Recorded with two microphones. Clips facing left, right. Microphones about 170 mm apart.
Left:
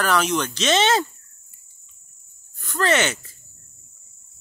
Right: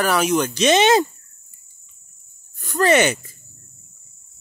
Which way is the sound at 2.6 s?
15° right (ahead or behind).